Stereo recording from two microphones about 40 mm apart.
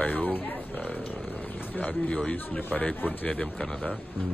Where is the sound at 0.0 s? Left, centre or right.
Left.